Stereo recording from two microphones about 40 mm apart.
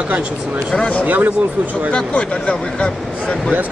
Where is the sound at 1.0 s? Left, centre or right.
Right.